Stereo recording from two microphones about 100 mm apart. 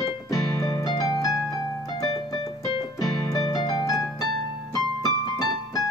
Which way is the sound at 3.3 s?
40° left (ahead or behind).